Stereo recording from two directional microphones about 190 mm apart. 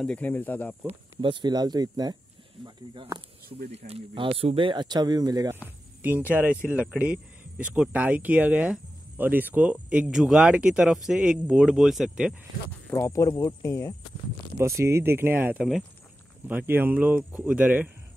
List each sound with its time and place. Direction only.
0.0 s speech: 5° left (ahead or behind)
1.2 s speech: 25° right (ahead or behind)
6.0 s speech: 10° right (ahead or behind)
12.9 s speech: 15° left (ahead or behind)
14.8 s speech: 15° right (ahead or behind)